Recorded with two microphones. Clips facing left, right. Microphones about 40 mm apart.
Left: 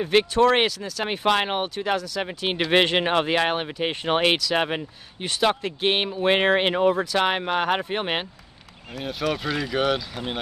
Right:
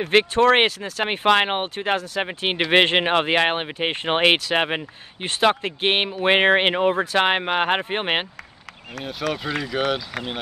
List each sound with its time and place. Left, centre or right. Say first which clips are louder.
0.1 s speech: right 2 dB; right
9.2 s speech: even; centre